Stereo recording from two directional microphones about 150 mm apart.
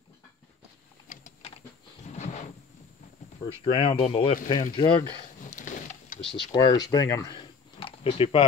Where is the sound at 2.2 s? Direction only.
55° left (ahead or behind).